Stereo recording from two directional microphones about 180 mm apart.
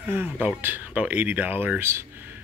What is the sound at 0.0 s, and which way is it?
Speech, 10° right (ahead or behind).